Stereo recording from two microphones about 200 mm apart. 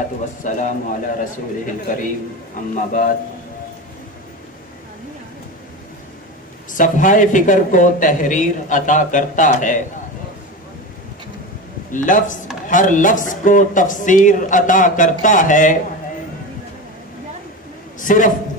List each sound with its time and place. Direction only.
0.4 s a man's voice: 40° left (ahead or behind)
6.7 s a man's voice: 40° left (ahead or behind)
11.9 s a man's voice: 40° left (ahead or behind)
17.9 s a man's voice: 40° left (ahead or behind)